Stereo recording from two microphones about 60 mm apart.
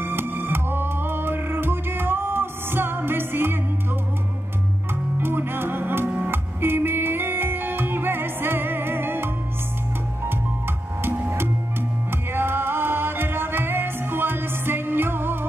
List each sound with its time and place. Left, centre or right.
0.0 s music: right
5.2 s music: right
6.3 s music: right
11.0 s music: right